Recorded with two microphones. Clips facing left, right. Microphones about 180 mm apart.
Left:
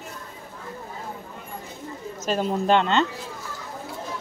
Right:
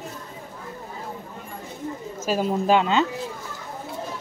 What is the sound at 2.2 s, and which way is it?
Speech, 5° right (ahead or behind).